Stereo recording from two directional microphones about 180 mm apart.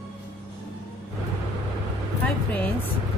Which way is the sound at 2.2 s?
10° left (ahead or behind).